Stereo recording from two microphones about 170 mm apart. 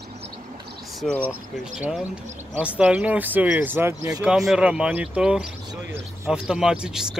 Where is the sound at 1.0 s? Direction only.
5° left (ahead or behind).